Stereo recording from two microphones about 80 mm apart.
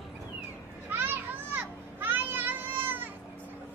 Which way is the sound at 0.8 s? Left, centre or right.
Right.